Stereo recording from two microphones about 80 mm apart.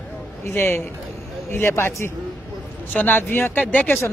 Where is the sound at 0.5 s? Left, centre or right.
Left.